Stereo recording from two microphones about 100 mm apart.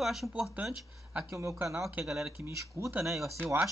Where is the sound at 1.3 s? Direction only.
30° right (ahead or behind).